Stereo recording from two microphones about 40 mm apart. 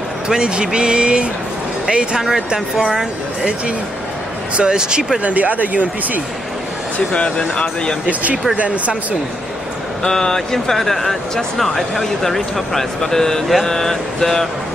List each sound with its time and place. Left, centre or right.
0.3 s speech: centre
4.6 s speech: right
5.2 s speech: right
7.1 s speech: left
7.3 s speech: left
8.1 s speech: right
10.0 s speech: centre